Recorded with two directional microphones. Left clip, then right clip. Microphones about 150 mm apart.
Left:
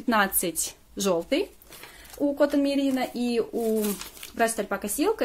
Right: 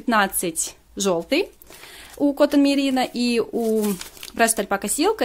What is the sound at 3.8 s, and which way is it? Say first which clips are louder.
Speech: right 4 dB; 40° right (ahead or behind).